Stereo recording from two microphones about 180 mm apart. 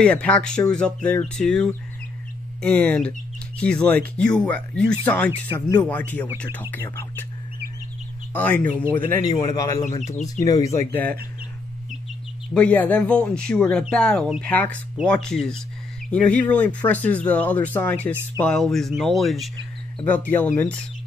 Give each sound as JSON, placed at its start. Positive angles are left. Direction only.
{"t": 0.0, "sound": "speech", "side_deg": 5}
{"t": 8.3, "sound": "speech", "side_deg": 10}
{"t": 9.1, "sound": "speech", "side_deg": 20}
{"t": 9.8, "sound": "speech", "side_deg": 40}
{"t": 10.4, "sound": "speech", "side_deg": 20}
{"t": 12.5, "sound": "speech", "side_deg": 10}